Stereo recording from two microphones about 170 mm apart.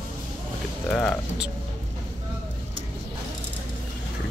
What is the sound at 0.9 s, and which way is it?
Speech, 5° left (ahead or behind).